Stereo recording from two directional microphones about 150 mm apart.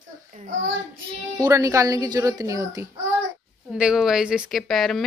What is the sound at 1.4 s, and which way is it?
A woman's voice, 20° right (ahead or behind).